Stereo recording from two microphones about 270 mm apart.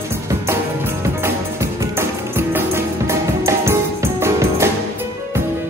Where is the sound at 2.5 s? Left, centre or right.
Centre.